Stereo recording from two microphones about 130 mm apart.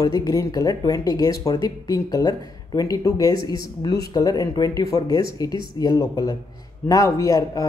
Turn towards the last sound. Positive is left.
turn(degrees=25)  # may be behind; listen again after turning